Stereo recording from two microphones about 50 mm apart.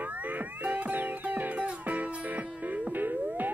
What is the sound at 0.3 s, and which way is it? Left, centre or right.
Music, right.